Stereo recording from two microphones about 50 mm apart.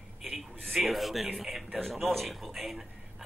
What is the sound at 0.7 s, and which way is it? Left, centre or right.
A man's voice, centre.